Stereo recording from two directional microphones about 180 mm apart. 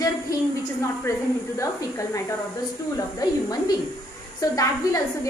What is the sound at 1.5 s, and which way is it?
A woman's voice, 15° left (ahead or behind).